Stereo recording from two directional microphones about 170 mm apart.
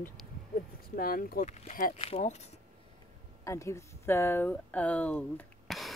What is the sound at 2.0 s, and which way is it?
Speech, 35° left (ahead or behind).